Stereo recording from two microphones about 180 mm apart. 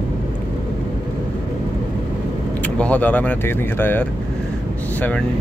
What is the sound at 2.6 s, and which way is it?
Speech, 10° left (ahead or behind).